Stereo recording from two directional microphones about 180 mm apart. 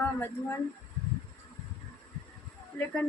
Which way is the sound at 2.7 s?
10° left (ahead or behind).